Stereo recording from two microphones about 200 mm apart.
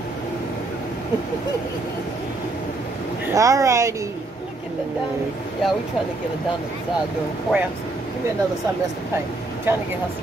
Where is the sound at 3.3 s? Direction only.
15° right (ahead or behind).